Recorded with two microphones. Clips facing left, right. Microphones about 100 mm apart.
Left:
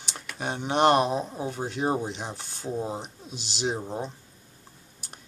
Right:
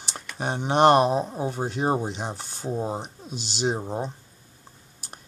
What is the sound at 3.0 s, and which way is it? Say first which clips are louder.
Speech: right 4 dB; centre (ahead or behind).